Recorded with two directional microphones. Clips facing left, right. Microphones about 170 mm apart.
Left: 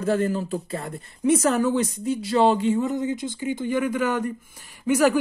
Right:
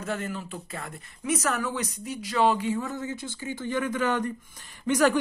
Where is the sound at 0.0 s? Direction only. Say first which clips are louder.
Left 9 dB; 35° left (ahead or behind).